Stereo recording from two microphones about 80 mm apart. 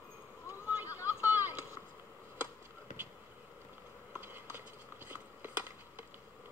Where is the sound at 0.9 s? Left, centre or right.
Right.